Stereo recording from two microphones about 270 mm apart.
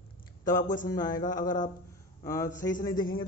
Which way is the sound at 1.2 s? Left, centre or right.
Left.